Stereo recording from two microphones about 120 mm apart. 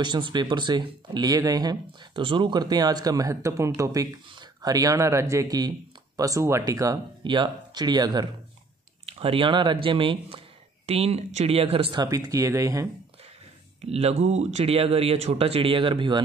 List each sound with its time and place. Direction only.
0.0 s speech: 40° right (ahead or behind)
7.2 s speech: 40° right (ahead or behind)
9.0 s speech: 50° right (ahead or behind)
10.9 s speech: 60° right (ahead or behind)
12.1 s speech: 25° right (ahead or behind)
13.8 s speech: 60° right (ahead or behind); by 16.2 s 45° right (ahead or behind)